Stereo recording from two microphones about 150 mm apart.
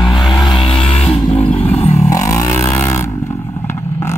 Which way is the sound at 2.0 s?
25° left (ahead or behind).